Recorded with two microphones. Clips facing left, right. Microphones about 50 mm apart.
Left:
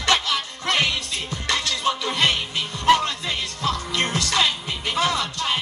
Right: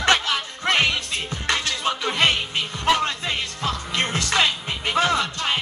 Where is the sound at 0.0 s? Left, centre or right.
Right.